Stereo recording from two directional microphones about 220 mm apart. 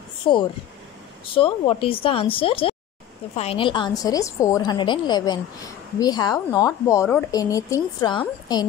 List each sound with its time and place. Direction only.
0.3 s a woman's voice: 20° left (ahead or behind)